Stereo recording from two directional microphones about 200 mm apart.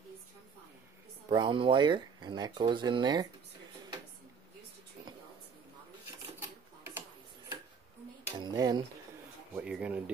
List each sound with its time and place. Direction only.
1.3 s speech: 25° right (ahead or behind)
8.3 s speech: 20° right (ahead or behind)
9.6 s speech: 5° right (ahead or behind)